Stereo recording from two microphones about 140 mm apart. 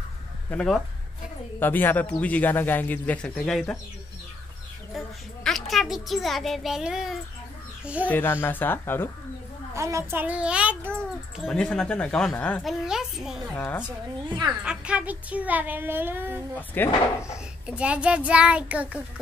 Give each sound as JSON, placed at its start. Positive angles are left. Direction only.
{"t": 0.5, "sound": "a child's voice", "side_deg": 5}
{"t": 4.9, "sound": "a child's voice", "side_deg": 0}
{"t": 8.1, "sound": "speech", "side_deg": 15}
{"t": 9.8, "sound": "a woman's voice", "side_deg": -20}
{"t": 10.2, "sound": "speech", "side_deg": -10}
{"t": 11.3, "sound": "a child's voice", "side_deg": 5}
{"t": 12.6, "sound": "a child's voice", "side_deg": -5}
{"t": 13.6, "sound": "speech", "side_deg": 15}
{"t": 13.8, "sound": "a woman's voice", "side_deg": -35}
{"t": 14.6, "sound": "speech", "side_deg": -5}
{"t": 16.8, "sound": "speech", "side_deg": 15}
{"t": 17.6, "sound": "speech", "side_deg": -10}